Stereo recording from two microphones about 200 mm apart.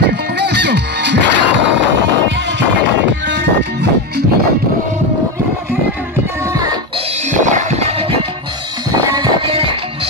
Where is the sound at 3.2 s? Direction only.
60° right (ahead or behind).